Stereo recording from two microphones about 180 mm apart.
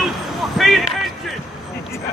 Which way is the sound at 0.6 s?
Centre (ahead or behind).